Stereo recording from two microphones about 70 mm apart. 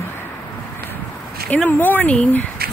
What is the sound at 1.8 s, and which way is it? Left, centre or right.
Speech, left.